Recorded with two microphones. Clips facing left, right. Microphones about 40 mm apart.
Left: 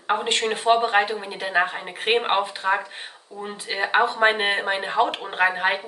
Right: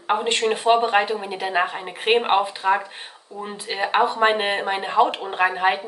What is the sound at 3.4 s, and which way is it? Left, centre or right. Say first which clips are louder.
Speech: right 1 dB; centre.